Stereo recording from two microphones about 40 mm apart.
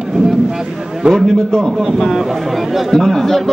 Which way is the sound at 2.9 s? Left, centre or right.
Centre.